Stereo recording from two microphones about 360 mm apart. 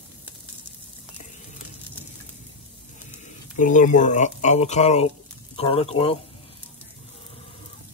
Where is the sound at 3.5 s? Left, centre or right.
Left.